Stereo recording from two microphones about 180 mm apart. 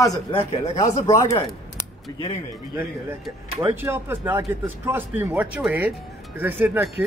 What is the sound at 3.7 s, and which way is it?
Speech, 10° right (ahead or behind).